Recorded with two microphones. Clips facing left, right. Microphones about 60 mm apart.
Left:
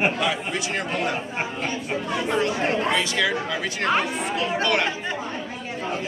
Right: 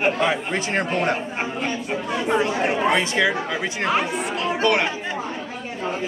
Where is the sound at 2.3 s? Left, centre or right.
Right.